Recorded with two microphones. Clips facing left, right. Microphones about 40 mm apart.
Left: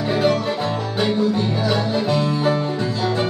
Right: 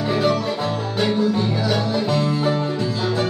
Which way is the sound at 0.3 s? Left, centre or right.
Left.